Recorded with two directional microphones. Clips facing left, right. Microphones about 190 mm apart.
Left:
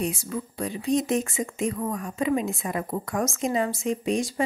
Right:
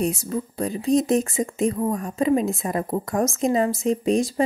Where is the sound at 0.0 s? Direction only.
40° right (ahead or behind).